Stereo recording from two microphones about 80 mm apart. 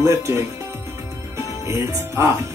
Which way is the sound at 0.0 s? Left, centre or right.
Right.